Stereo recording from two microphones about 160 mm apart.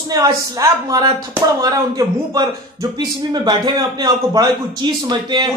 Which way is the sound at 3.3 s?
25° right (ahead or behind).